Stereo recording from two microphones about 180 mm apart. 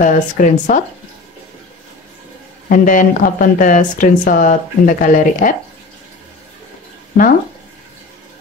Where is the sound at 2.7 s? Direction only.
45° left (ahead or behind).